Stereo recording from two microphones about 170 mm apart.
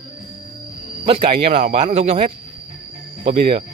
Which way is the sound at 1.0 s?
30° right (ahead or behind).